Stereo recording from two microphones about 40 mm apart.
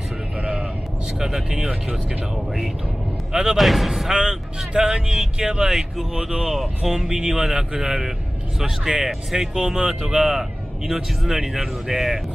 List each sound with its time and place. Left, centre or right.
0.4 s vehicle: right
1.2 s speech: centre
1.6 s speech: right
3.5 s speech: centre
4.1 s speech: centre